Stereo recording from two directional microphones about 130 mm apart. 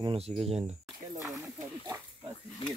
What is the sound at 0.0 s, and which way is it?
Speech, 40° right (ahead or behind).